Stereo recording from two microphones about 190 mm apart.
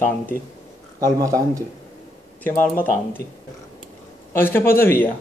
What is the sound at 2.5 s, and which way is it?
Speech, 45° left (ahead or behind).